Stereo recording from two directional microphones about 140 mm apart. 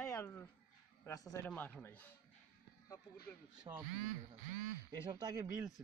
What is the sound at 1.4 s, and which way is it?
Speech, 10° left (ahead or behind).